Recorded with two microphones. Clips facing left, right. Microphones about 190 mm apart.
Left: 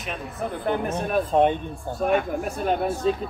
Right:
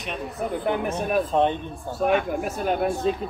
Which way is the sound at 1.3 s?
15° left (ahead or behind).